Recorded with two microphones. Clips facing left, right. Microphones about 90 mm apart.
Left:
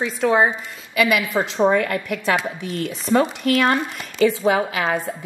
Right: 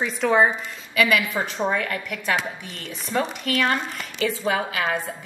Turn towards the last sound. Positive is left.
turn(degrees=20)  # may be behind; listen again after turning